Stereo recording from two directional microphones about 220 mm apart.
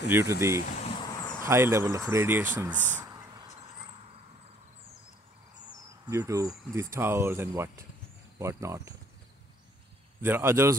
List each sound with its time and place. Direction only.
0.1 s speech: 10° right (ahead or behind)
0.6 s a sound: 35° left (ahead or behind)
1.0 s a sound: 20° left (ahead or behind)
1.4 s speech: 10° right (ahead or behind)
6.0 s speech: 15° right (ahead or behind)
10.2 s speech: 10° right (ahead or behind)